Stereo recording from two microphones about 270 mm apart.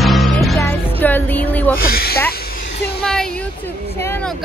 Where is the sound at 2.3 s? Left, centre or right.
Left.